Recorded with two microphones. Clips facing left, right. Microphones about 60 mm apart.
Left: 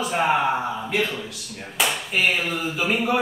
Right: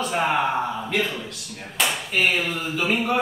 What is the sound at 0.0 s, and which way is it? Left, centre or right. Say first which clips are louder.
Speech: left 1 dB; centre.